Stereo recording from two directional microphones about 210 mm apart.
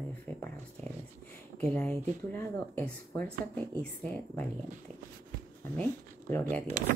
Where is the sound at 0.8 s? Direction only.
35° right (ahead or behind).